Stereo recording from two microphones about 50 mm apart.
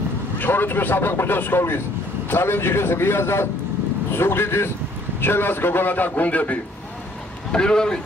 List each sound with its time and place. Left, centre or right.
0.4 s a man's voice: left
7.5 s speech: centre